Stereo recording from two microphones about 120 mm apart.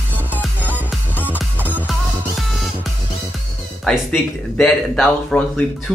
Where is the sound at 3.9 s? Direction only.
5° left (ahead or behind).